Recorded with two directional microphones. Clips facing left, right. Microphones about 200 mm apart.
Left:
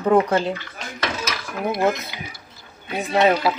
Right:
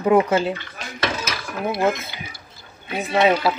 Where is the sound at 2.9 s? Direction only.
5° right (ahead or behind).